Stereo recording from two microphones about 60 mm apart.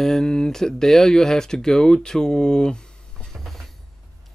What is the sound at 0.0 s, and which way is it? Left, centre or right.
Speech, centre.